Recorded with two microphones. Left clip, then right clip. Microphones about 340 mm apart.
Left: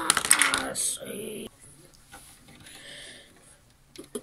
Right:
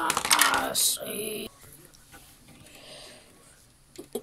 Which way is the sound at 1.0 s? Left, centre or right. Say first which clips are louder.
Right 3 dB; right.